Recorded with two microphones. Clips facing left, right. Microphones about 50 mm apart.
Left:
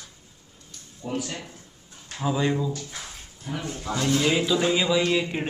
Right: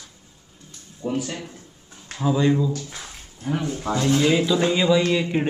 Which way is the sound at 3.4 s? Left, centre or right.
Right.